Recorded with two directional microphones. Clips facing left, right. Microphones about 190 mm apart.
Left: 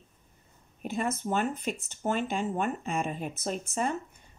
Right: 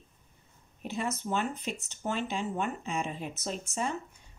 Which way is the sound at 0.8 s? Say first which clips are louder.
Left 3 dB; 50° left (ahead or behind).